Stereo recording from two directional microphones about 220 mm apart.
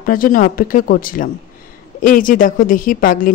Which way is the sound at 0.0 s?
40° left (ahead or behind).